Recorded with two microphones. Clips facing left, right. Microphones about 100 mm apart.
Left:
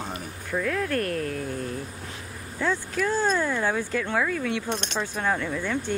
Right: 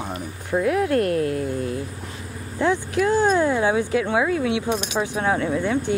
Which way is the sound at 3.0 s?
15° right (ahead or behind).